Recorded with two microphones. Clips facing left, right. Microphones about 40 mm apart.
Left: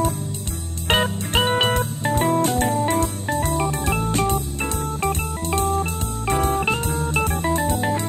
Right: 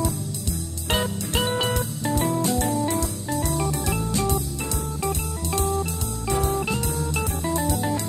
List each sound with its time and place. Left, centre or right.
0.8 s music: left